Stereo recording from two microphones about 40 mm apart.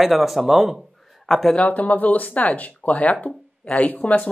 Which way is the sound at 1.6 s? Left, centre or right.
Left.